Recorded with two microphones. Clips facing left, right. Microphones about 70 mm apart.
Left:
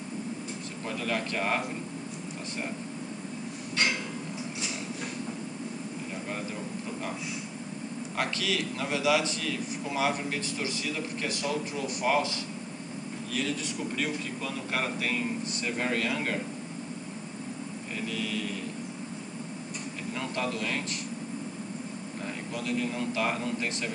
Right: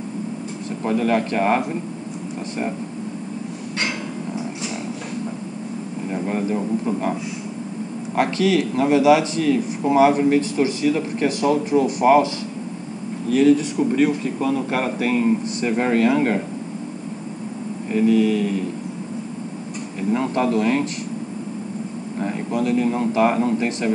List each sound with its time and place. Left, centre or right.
0.8 s speech: right
6.1 s speech: right
8.2 s speech: right
13.3 s speech: right
17.9 s speech: right
20.1 s speech: right
22.2 s speech: right